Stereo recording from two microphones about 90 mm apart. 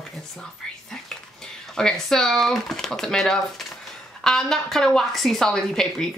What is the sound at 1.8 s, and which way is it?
Speech, 5° left (ahead or behind).